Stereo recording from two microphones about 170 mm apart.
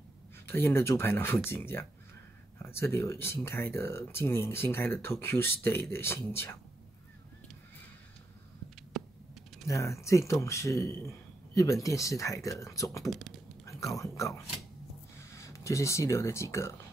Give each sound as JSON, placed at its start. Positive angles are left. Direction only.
{"t": 0.5, "sound": "speech", "side_deg": 15}
{"t": 9.0, "sound": "a sound", "side_deg": 0}
{"t": 9.7, "sound": "speech", "side_deg": 15}
{"t": 13.1, "sound": "speech", "side_deg": 0}
{"t": 13.7, "sound": "a sound", "side_deg": 20}
{"t": 14.1, "sound": "speech", "side_deg": 20}